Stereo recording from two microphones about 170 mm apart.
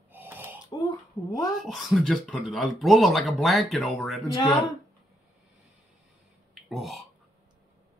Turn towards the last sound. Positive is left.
turn(degrees=0)  # may be behind; listen again after turning